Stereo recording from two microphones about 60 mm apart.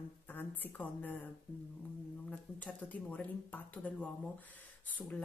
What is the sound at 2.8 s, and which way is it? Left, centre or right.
Speech, left.